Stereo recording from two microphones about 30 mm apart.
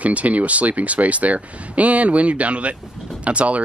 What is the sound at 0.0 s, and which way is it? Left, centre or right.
Speech, right.